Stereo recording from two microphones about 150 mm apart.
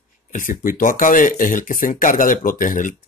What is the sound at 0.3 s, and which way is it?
Speech, 65° left (ahead or behind).